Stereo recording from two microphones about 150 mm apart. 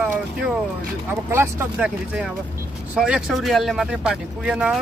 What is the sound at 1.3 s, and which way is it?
Speech, 15° right (ahead or behind).